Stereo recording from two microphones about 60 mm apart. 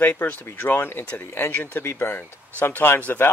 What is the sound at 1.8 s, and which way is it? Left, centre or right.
Speech, left.